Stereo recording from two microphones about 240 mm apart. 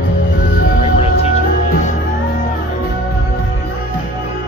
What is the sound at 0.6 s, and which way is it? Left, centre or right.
Music, left.